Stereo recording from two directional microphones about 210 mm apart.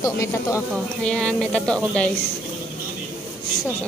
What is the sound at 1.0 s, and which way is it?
Speech, 5° left (ahead or behind).